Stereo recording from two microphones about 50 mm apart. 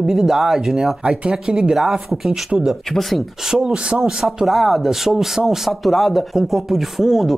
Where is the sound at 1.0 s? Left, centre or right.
Centre.